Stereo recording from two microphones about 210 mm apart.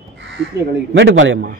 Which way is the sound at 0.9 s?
60° right (ahead or behind).